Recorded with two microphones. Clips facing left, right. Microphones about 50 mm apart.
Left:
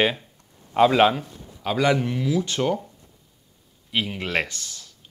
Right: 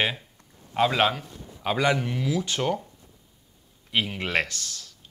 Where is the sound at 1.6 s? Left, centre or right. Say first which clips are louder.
Left 3 dB; centre.